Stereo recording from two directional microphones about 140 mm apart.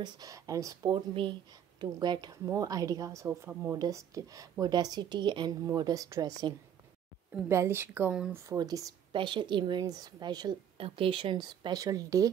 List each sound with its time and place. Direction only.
0.0 s speech: 25° right (ahead or behind)
0.9 s a woman's voice: 35° right (ahead or behind); by 8.4 s 10° right (ahead or behind)
8.4 s a woman's voice: 25° right (ahead or behind)